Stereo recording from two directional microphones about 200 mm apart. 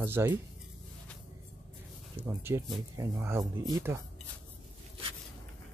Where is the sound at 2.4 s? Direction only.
15° right (ahead or behind).